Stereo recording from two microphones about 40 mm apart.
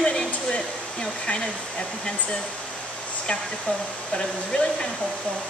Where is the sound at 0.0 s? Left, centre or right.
Left.